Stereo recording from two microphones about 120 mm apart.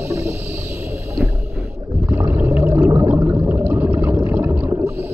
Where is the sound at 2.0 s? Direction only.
20° right (ahead or behind).